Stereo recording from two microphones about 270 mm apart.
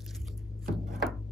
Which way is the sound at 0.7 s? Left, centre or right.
Centre.